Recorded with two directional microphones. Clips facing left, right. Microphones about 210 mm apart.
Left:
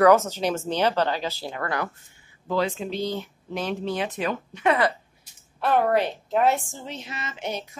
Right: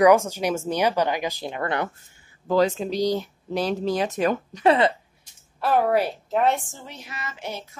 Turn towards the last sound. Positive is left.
turn(degrees=20)  # may be behind; listen again after turning